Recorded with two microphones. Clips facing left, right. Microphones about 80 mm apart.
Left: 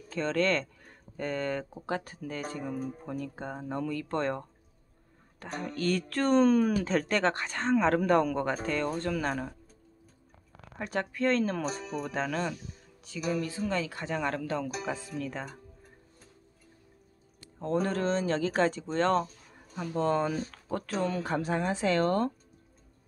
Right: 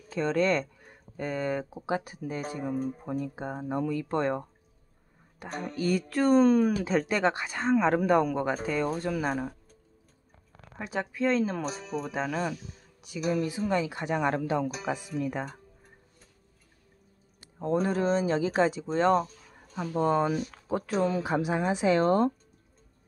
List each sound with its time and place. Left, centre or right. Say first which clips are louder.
0.1 s speech: right 2 dB; centre
3.1 s speech: right 3 dB; centre
10.8 s speech: right 1 dB; centre
17.6 s speech: right 2 dB; centre